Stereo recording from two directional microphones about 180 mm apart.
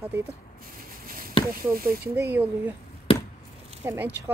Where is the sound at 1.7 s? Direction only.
55° right (ahead or behind).